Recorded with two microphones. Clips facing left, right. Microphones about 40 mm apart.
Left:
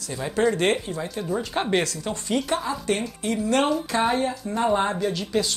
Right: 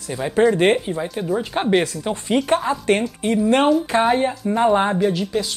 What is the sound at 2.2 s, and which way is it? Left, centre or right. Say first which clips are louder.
Speech: right 6 dB; right.